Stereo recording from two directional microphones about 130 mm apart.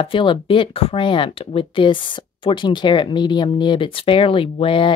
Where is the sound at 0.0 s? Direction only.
40° left (ahead or behind).